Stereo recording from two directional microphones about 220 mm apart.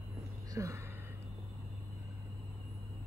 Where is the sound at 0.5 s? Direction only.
15° right (ahead or behind).